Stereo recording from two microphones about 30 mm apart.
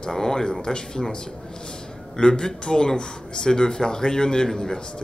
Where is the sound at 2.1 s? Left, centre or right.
Left.